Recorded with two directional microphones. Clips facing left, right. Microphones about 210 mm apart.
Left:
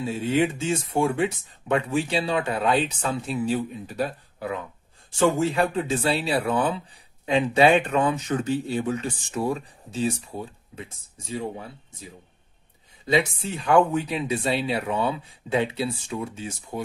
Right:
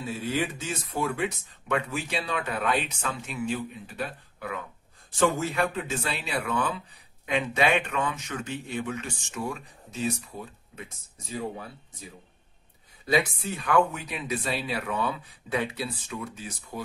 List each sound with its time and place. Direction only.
0.0 s speech: 25° left (ahead or behind)
13.0 s speech: 25° left (ahead or behind)